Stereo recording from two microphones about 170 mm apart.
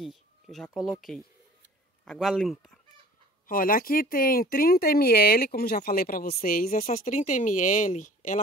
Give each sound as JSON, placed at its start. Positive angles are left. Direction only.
{"t": 0.0, "sound": "speech", "side_deg": 0}
{"t": 3.4, "sound": "speech", "side_deg": 55}